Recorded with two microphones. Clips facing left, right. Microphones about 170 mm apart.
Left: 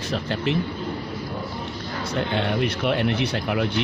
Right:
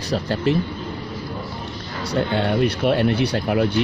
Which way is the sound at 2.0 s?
40° right (ahead or behind).